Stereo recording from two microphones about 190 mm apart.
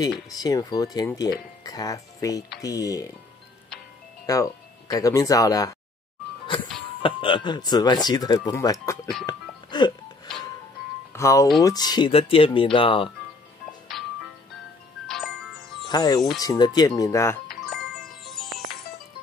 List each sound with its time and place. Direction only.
0.3 s speech: 20° left (ahead or behind)
4.3 s speech: 20° left (ahead or behind)
7.0 s speech: 30° left (ahead or behind)
9.2 s music: 25° left (ahead or behind)
11.1 s speech: 15° left (ahead or behind)
15.0 s music: centre (ahead or behind)
15.9 s speech: 20° left (ahead or behind)
17.5 s music: centre (ahead or behind)